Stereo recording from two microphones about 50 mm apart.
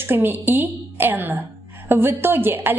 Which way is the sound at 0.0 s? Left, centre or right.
Right.